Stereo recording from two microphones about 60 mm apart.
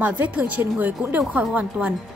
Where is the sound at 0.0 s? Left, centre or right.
Right.